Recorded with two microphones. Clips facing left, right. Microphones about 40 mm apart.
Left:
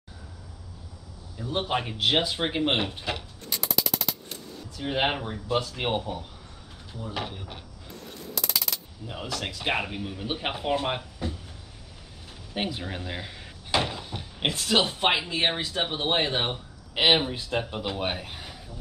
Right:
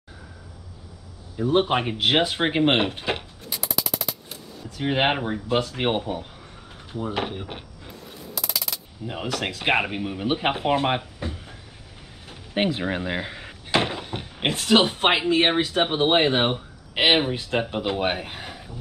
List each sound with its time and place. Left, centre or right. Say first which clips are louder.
1.4 s speech: right 7 dB; right
3.4 s a sound: even; centre
4.8 s speech: right 5 dB; right
7.9 s a sound: even; centre
9.0 s speech: right 8 dB; right
9.3 s speech: right 6 dB; right
12.5 s speech: right 8 dB; right